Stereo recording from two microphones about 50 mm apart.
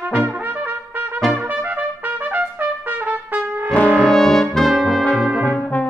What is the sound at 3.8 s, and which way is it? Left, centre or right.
Brass instrument, right.